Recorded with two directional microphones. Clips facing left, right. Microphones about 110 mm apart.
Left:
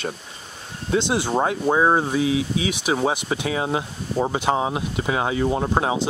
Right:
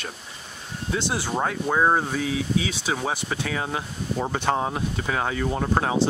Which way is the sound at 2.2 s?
50° right (ahead or behind).